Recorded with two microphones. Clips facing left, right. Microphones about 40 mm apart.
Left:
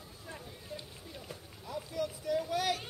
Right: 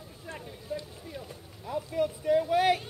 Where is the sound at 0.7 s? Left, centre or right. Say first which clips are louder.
Right 9 dB; centre.